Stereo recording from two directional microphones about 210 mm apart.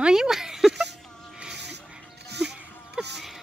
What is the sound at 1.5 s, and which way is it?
Music, 55° right (ahead or behind).